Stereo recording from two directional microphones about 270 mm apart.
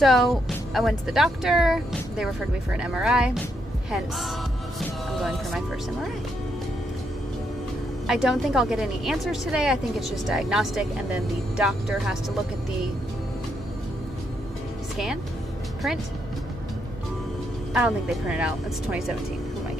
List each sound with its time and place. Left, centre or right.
0.0 s a woman's voice: centre
4.7 s music: centre
8.1 s a woman's voice: centre
17.7 s a woman's voice: centre